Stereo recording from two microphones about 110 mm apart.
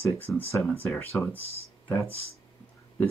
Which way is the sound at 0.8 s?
Centre (ahead or behind).